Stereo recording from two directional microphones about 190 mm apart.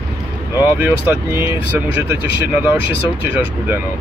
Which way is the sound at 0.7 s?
10° right (ahead or behind).